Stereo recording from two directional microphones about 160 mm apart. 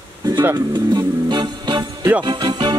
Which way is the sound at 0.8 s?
25° right (ahead or behind).